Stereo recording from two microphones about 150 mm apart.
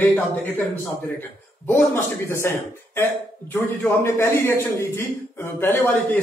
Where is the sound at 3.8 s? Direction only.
15° left (ahead or behind).